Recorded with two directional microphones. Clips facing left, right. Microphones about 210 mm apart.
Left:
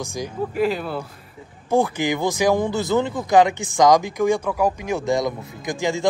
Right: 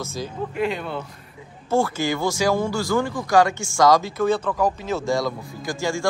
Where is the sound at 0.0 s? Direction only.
15° left (ahead or behind).